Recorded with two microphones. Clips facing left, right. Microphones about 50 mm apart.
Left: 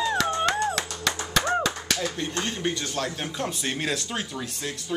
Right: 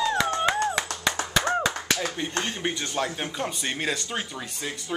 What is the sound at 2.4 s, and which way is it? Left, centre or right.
Speech, centre.